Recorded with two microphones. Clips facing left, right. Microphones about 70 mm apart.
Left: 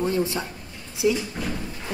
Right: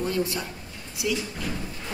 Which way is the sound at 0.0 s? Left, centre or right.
Left.